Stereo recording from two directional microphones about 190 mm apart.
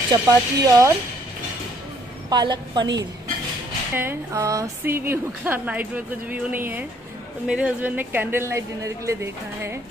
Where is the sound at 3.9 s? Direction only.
10° right (ahead or behind).